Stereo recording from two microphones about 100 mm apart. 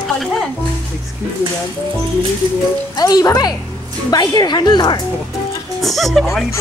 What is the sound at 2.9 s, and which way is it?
Speech, 40° left (ahead or behind).